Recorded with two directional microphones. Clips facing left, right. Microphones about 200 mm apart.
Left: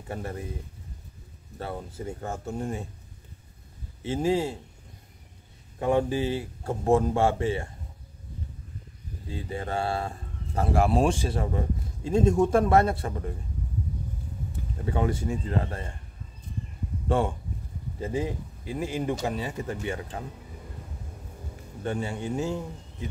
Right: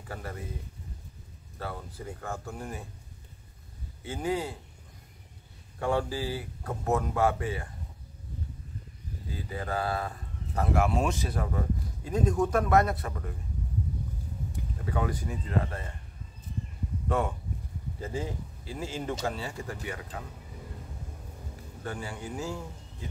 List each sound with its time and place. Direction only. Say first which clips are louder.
0.1 s speech: left 5 dB; 25° left (ahead or behind)
1.6 s speech: left 4 dB; 25° left (ahead or behind)
4.0 s speech: left 6 dB; 25° left (ahead or behind)
5.8 s speech: left 5 dB; 20° left (ahead or behind)
9.3 s speech: left 3 dB; 25° left (ahead or behind)
14.9 s speech: left 5 dB; 25° left (ahead or behind)
17.1 s speech: left 4 dB; 30° left (ahead or behind)
18.0 s speech: left 5 dB; 20° left (ahead or behind)
21.8 s speech: left 7 dB; 25° left (ahead or behind)